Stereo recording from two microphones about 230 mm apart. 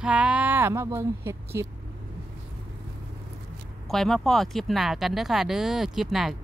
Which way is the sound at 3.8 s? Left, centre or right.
Centre.